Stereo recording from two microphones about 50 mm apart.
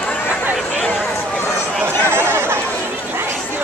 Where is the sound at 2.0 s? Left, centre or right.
Right.